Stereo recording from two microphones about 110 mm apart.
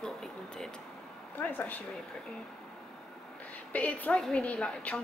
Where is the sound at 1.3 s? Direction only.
15° left (ahead or behind).